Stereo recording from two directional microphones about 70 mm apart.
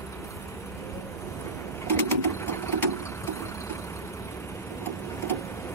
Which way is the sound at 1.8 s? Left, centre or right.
Left.